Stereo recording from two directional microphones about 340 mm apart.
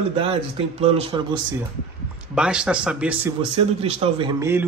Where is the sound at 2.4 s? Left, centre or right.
Centre.